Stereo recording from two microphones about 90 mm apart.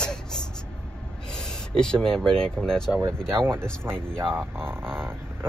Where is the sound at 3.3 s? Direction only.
25° right (ahead or behind).